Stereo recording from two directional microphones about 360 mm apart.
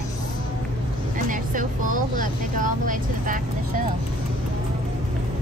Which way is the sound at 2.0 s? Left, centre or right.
Right.